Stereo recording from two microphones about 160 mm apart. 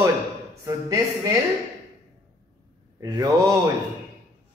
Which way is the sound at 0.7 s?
25° right (ahead or behind).